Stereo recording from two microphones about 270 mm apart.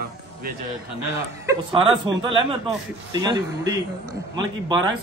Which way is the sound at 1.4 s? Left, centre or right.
Centre.